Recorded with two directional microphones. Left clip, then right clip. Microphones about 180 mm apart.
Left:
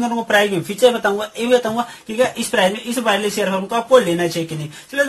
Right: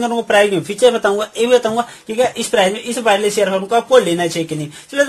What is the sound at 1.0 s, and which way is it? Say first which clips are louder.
A man's voice: right 4 dB; 50° right (ahead or behind).